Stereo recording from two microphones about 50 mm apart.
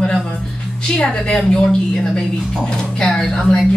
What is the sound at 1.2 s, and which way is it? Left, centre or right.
Speech, centre.